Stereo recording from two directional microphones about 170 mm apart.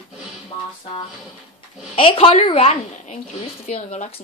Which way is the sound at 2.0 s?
35° left (ahead or behind).